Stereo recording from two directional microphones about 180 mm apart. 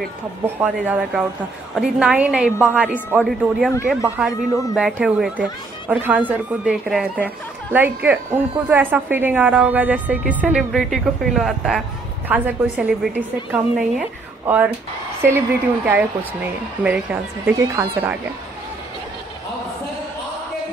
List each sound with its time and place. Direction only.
0.6 s a woman's voice: 5° right (ahead or behind)
4.5 s speech: 20° left (ahead or behind)
4.7 s a woman's voice: 5° right (ahead or behind)